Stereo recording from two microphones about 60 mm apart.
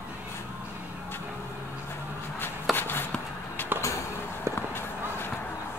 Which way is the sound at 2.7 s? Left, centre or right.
Left.